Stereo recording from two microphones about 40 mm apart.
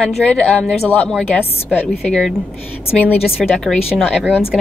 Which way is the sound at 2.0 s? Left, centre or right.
Centre.